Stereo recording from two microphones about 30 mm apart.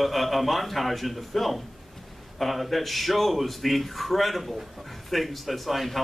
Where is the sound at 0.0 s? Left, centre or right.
Centre.